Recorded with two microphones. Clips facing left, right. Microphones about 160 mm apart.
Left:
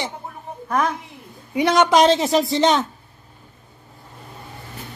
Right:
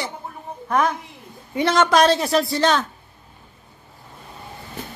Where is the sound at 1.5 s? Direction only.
15° left (ahead or behind).